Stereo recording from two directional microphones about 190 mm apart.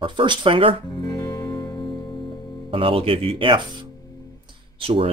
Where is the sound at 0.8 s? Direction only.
25° left (ahead or behind).